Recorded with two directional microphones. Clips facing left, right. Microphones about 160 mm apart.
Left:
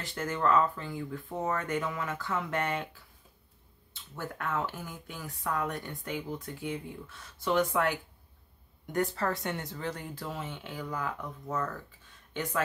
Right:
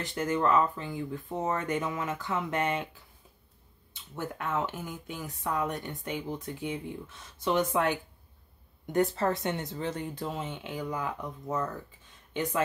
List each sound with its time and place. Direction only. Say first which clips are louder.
0.0 s speech: right 3 dB; 20° right (ahead or behind)